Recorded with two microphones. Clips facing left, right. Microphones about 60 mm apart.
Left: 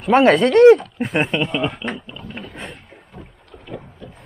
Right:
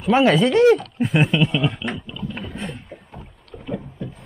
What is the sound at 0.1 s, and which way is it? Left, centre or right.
Speech, left.